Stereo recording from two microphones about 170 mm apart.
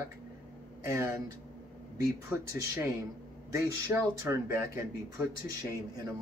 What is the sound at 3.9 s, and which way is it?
Speech, 15° right (ahead or behind).